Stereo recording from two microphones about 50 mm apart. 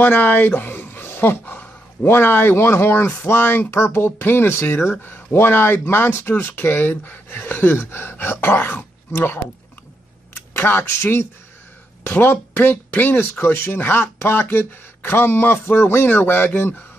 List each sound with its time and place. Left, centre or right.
0.0 s speech: left
0.6 s a sound: left
2.0 s speech: left
5.0 s speech: left
10.5 s speech: left
12.0 s speech: left